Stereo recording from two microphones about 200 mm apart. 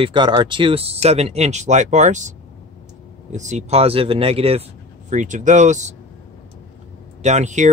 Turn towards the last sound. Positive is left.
turn(degrees=-35)  # may be behind; listen again after turning